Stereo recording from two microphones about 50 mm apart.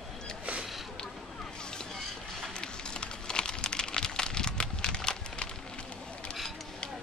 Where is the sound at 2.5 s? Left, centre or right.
Centre.